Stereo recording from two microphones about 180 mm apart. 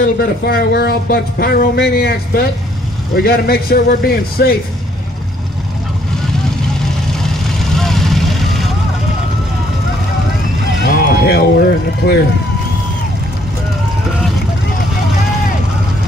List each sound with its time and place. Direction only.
0.2 s speech: 55° left (ahead or behind)
7.1 s vehicle: centre (ahead or behind)
10.8 s a sound: 60° left (ahead or behind)
12.0 s speech: 70° left (ahead or behind)